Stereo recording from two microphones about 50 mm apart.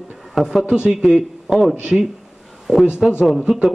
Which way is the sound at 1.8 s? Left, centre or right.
Centre.